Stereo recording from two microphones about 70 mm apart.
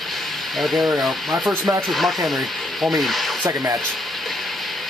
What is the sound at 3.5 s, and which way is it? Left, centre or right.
Speech, right.